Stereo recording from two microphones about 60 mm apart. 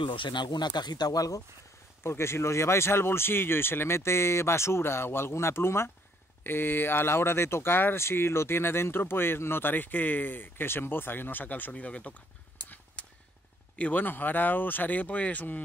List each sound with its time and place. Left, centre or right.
1.0 s speech: left
2.0 s speech: left
13.0 s vehicle: centre
13.7 s speech: left